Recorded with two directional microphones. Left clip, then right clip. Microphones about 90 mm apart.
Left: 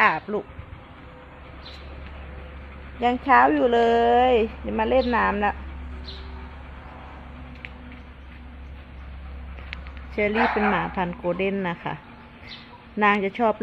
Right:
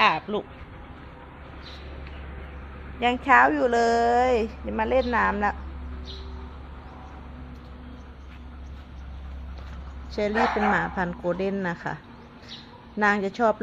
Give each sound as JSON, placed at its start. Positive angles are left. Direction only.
{"t": 0.0, "sound": "a sound", "side_deg": 15}
{"t": 3.0, "sound": "speech", "side_deg": 15}
{"t": 10.3, "sound": "speech", "side_deg": -5}
{"t": 10.7, "sound": "a woman's voice", "side_deg": 15}
{"t": 13.0, "sound": "speech", "side_deg": 25}